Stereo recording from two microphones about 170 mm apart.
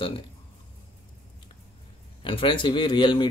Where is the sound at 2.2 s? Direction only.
30° left (ahead or behind).